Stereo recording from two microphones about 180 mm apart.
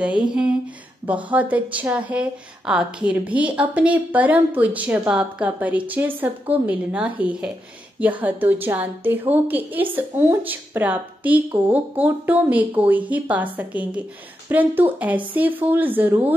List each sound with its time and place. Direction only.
0.0 s a woman's voice: 5° right (ahead or behind)